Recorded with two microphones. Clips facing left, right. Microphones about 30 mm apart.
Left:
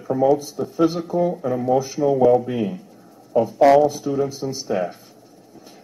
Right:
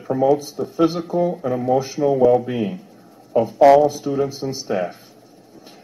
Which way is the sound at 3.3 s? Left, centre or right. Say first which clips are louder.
Right 2 dB; right.